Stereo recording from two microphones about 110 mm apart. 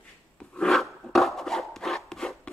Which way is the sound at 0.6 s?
5° left (ahead or behind).